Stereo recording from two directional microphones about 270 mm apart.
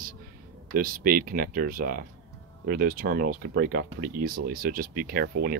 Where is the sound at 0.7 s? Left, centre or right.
Right.